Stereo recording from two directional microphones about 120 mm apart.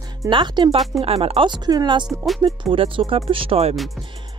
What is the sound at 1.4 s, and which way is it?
Speech, 35° right (ahead or behind).